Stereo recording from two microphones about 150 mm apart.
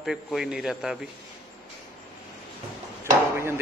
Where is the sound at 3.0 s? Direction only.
15° right (ahead or behind).